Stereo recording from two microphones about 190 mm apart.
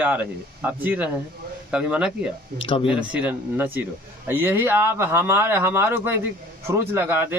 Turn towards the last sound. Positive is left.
turn(degrees=-10)  # may be behind; listen again after turning